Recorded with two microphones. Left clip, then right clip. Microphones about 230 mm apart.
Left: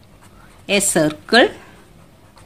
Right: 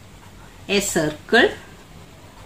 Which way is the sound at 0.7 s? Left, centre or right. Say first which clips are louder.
Left 4 dB; left.